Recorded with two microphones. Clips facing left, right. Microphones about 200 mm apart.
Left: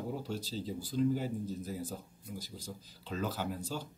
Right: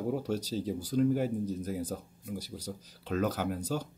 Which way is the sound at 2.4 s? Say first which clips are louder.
Right 5 dB; 70° right (ahead or behind).